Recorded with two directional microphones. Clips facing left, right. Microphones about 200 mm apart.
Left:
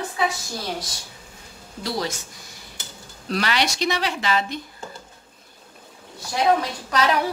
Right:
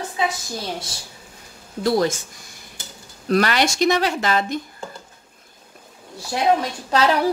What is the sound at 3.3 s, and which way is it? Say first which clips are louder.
Speech: right 5 dB; 50° right (ahead or behind).